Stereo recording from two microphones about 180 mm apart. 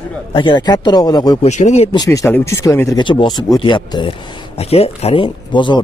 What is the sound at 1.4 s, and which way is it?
Speech, 40° left (ahead or behind).